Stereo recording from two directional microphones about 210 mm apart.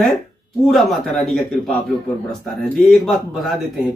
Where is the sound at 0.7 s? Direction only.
Centre (ahead or behind).